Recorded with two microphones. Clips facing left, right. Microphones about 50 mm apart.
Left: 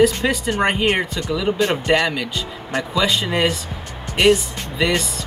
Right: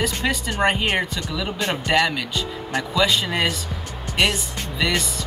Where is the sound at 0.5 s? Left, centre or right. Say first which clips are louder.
Left 2 dB; centre.